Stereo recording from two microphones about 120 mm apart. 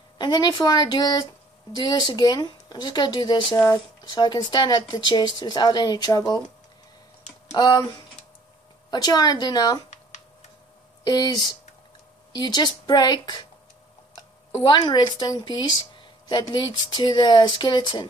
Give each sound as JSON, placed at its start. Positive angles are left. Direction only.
{"t": 0.2, "sound": "a woman's voice", "side_deg": 35}
{"t": 7.5, "sound": "a woman's voice", "side_deg": 40}
{"t": 8.9, "sound": "a woman's voice", "side_deg": 35}
{"t": 11.1, "sound": "a woman's voice", "side_deg": 35}
{"t": 14.6, "sound": "a woman's voice", "side_deg": 35}